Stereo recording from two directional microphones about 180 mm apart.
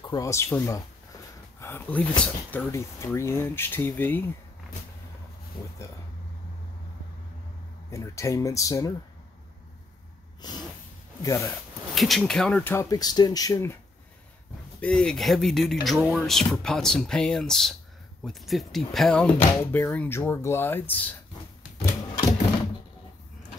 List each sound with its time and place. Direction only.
0.0 s speech: 20° left (ahead or behind)
7.9 s speech: 15° left (ahead or behind)
10.4 s speech: 25° left (ahead or behind)
11.9 s speech: centre (ahead or behind); by 13.7 s 15° left (ahead or behind)
14.8 s speech: 5° left (ahead or behind)